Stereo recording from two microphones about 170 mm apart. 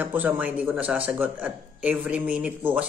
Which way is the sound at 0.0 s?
10° right (ahead or behind).